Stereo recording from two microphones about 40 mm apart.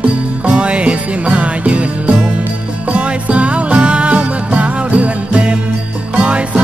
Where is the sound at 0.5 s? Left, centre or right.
Right.